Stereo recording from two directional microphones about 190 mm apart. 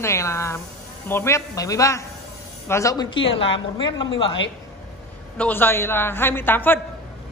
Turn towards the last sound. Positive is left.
turn(degrees=10)  # may be behind; listen again after turning